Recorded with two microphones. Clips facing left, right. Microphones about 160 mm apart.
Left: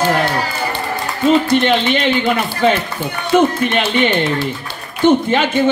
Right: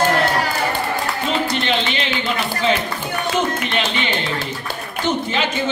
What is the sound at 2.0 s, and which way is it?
Speech, 55° left (ahead or behind).